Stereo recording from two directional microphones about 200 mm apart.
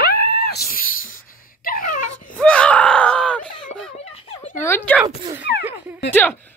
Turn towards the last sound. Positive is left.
turn(degrees=10)  # may be behind; listen again after turning